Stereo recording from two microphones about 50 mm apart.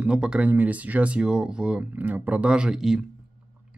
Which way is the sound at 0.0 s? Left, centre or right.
Centre.